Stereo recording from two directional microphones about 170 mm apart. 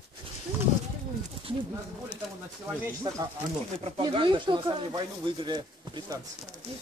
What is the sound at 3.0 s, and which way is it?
Speech, 20° right (ahead or behind).